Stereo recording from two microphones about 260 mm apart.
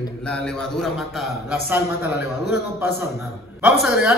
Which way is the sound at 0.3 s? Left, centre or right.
Centre.